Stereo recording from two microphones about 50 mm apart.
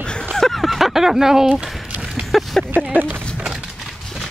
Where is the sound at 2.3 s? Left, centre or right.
Centre.